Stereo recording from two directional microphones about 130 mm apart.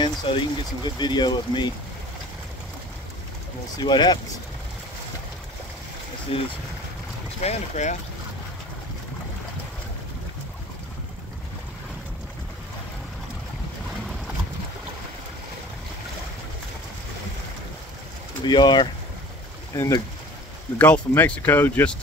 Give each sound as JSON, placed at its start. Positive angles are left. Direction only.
{"t": 0.0, "sound": "speech", "side_deg": 35}
{"t": 3.7, "sound": "speech", "side_deg": 35}
{"t": 6.3, "sound": "speech", "side_deg": 45}
{"t": 7.4, "sound": "speech", "side_deg": 60}
{"t": 18.4, "sound": "speech", "side_deg": 35}
{"t": 20.7, "sound": "speech", "side_deg": 10}